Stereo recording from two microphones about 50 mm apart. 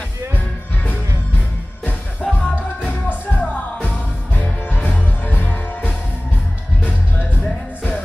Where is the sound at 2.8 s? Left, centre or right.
Left.